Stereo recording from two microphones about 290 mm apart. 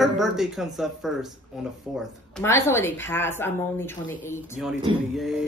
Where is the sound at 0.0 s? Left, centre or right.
Centre.